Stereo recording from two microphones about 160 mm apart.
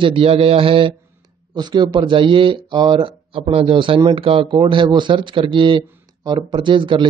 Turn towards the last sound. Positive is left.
turn(degrees=-30)  # may be behind; listen again after turning